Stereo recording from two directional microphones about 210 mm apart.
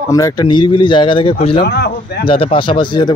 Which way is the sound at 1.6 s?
50° left (ahead or behind).